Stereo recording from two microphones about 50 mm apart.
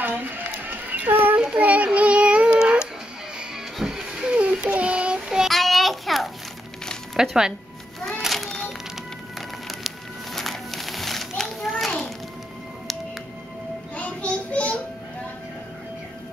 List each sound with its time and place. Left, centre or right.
0.0 s a sound: right
1.6 s child singing: right
3.8 s a sound: centre
4.3 s child singing: right
5.5 s children playing: centre
7.2 s speech: centre
8.3 s music: centre
13.9 s child singing: left